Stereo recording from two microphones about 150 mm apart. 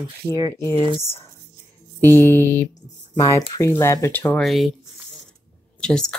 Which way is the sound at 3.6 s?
20° left (ahead or behind).